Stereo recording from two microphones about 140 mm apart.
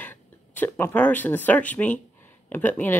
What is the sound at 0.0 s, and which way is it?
Speech, 15° left (ahead or behind).